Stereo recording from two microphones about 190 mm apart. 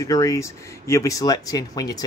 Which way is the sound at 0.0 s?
15° left (ahead or behind).